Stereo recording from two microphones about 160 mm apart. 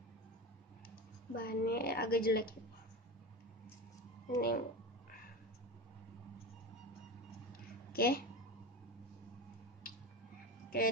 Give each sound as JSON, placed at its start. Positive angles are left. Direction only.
{"t": 1.3, "sound": "a woman's voice", "side_deg": 65}
{"t": 4.4, "sound": "a woman's voice", "side_deg": 65}
{"t": 7.9, "sound": "speech", "side_deg": 70}